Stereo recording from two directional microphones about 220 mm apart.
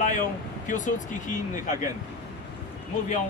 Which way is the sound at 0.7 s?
35° left (ahead or behind).